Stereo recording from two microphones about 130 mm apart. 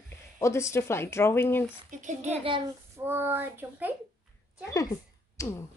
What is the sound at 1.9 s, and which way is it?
Speech, 70° right (ahead or behind).